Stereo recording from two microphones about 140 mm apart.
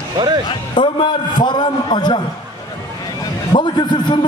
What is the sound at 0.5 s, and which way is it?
A man's voice, 35° left (ahead or behind).